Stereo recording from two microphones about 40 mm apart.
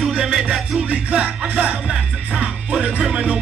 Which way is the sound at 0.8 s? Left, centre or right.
Right.